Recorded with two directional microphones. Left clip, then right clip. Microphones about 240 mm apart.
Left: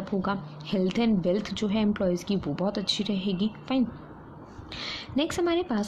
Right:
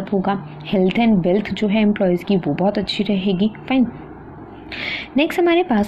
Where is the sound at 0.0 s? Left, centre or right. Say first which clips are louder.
Right 9 dB; centre.